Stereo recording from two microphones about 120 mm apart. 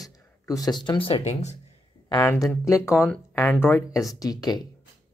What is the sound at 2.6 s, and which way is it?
Speech, 25° left (ahead or behind).